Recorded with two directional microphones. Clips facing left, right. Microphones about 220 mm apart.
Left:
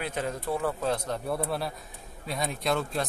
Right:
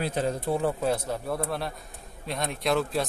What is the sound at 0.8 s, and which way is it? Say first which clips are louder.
Speech: right 2 dB; 5° right (ahead or behind).